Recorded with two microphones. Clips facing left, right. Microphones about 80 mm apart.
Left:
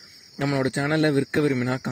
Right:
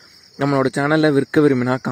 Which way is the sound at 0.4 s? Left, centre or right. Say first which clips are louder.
Right 7 dB; right.